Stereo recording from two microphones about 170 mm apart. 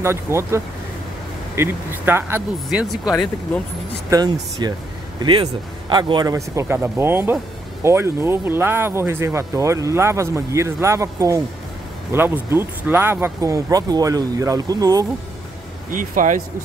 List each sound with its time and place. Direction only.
0.0 s speech: 15° right (ahead or behind)
4.1 s speech: 25° right (ahead or behind)
15.9 s speech: 50° right (ahead or behind)